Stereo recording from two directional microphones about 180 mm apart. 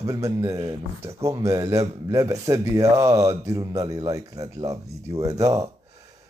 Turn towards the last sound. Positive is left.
turn(degrees=-20)  # may be behind; listen again after turning